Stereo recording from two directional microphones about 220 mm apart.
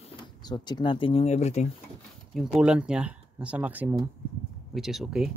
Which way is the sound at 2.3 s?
5° right (ahead or behind).